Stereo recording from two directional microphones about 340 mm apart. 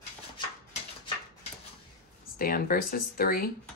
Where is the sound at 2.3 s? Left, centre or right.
Left.